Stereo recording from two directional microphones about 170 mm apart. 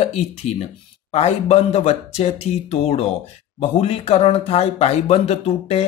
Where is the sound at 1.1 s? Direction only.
40° left (ahead or behind).